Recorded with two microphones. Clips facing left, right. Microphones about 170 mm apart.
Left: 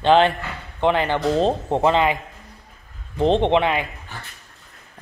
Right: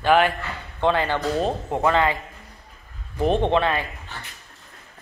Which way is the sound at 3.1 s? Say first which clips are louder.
Left 3 dB; 20° left (ahead or behind).